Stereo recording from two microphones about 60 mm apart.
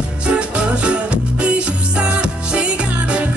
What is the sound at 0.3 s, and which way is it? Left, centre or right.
Music, centre.